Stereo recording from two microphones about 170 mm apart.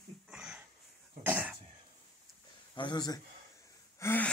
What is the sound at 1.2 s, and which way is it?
Cough, 10° right (ahead or behind).